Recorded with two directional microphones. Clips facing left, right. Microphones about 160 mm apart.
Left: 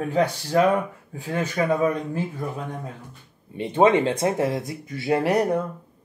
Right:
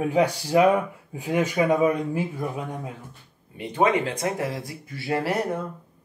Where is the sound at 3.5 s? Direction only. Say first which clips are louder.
Left 4 dB; 25° left (ahead or behind).